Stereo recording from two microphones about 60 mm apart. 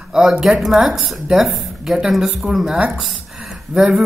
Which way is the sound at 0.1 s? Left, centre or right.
Centre.